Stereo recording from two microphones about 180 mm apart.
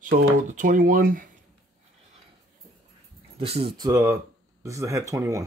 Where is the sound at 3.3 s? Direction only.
35° right (ahead or behind).